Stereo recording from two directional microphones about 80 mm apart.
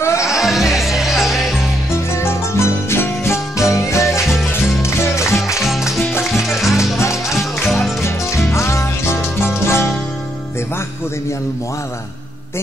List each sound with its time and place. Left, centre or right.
0.0 s music: left
0.3 s music: centre
2.1 s music: left
5.6 s music: centre
8.0 s music: left